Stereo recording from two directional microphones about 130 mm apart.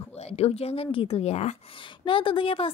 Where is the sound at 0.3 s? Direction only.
50° left (ahead or behind).